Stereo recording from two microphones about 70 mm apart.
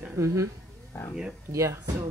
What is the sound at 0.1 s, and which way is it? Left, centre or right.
Speech, right.